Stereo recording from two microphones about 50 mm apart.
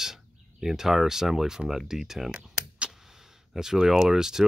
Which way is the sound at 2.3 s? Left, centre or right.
Centre.